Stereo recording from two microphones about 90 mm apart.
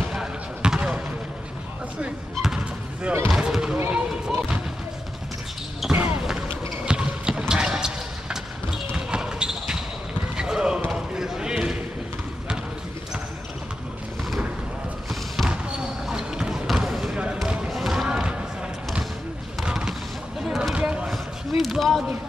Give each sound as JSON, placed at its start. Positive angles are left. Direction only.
{"t": 0.1, "sound": "basketball bounce", "side_deg": -5}
{"t": 2.3, "sound": "basketball bounce", "side_deg": -5}
{"t": 3.3, "sound": "fireworks", "side_deg": -5}
{"t": 5.8, "sound": "basketball bounce", "side_deg": -5}
{"t": 10.9, "sound": "a sound", "side_deg": -5}
{"t": 15.5, "sound": "basketball bounce", "side_deg": -10}
{"t": 17.5, "sound": "music", "side_deg": -5}
{"t": 19.6, "sound": "a sound", "side_deg": -5}
{"t": 21.1, "sound": "a sound", "side_deg": 0}